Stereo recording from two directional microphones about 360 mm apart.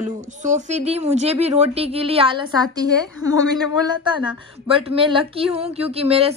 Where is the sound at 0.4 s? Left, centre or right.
Centre.